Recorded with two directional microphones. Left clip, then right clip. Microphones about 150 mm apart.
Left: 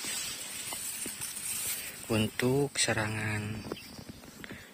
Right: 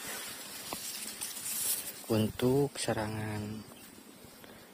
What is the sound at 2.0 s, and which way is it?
Speech, 25° right (ahead or behind).